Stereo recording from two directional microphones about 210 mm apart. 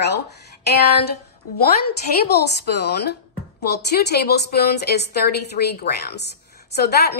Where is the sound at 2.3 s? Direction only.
50° left (ahead or behind).